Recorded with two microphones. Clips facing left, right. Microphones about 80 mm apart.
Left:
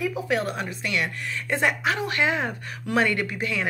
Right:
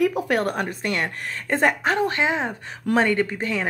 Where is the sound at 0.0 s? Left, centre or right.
Right.